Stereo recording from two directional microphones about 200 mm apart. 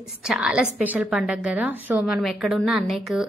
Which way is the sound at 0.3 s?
5° right (ahead or behind).